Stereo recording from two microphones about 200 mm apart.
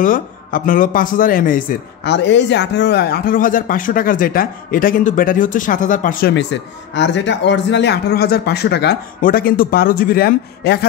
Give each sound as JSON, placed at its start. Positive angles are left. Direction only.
{"t": 0.0, "sound": "speech", "side_deg": 45}
{"t": 2.0, "sound": "speech", "side_deg": 60}
{"t": 6.3, "sound": "a man's voice", "side_deg": 65}